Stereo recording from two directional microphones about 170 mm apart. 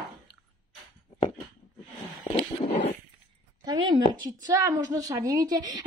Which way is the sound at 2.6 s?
35° left (ahead or behind).